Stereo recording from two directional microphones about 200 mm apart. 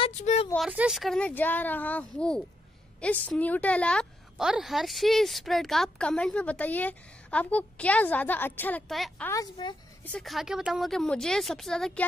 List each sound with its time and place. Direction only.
0.0 s a sound: 35° left (ahead or behind)
0.6 s a woman's voice: 5° right (ahead or behind)
9.3 s a woman's voice: 20° left (ahead or behind)
10.0 s a woman's voice: 5° left (ahead or behind)